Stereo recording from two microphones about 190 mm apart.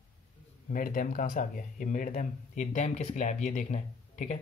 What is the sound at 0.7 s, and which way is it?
Speech, 45° left (ahead or behind).